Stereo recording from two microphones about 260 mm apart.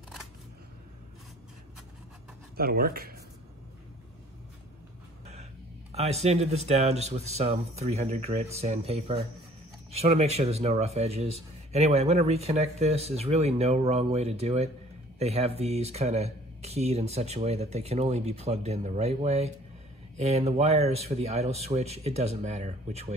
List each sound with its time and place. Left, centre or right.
2.5 s speech: right
5.2 s speech: right